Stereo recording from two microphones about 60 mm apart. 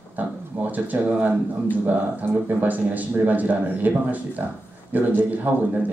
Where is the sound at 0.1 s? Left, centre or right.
Right.